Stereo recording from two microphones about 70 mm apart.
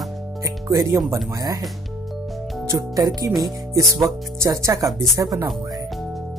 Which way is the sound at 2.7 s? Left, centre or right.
Right.